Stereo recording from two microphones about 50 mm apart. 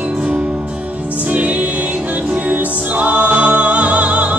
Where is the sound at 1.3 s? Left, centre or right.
Right.